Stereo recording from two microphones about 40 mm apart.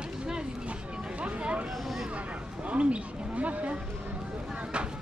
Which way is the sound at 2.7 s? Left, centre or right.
Right.